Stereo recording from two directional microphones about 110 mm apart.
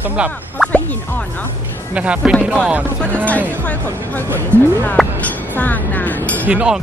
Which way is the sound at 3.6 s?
15° left (ahead or behind).